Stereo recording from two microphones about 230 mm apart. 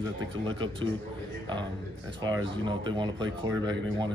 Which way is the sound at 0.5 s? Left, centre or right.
Centre.